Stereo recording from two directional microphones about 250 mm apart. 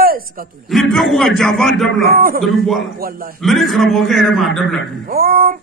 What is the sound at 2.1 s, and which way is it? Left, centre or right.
Speech, right.